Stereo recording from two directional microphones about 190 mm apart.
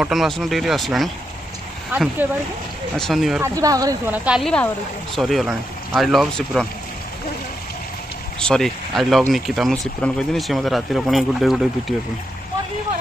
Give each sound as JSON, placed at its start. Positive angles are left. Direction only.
{"t": 0.0, "sound": "speech", "side_deg": 0}
{"t": 3.4, "sound": "speech", "side_deg": -20}
{"t": 4.2, "sound": "speech", "side_deg": 0}
{"t": 8.4, "sound": "speech", "side_deg": 5}